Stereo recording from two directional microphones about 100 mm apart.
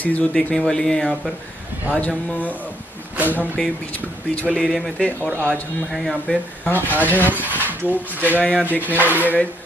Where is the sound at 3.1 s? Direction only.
15° right (ahead or behind).